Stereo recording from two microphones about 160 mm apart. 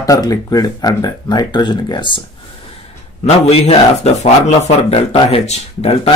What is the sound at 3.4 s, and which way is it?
Speech, 40° left (ahead or behind).